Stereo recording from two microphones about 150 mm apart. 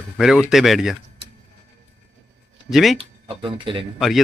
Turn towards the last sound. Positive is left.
turn(degrees=0)  # may be behind; listen again after turning